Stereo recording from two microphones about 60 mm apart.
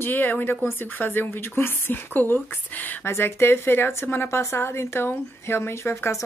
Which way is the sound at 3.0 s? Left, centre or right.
Left.